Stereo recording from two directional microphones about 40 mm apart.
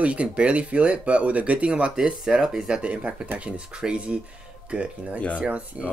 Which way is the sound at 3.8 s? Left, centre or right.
Centre.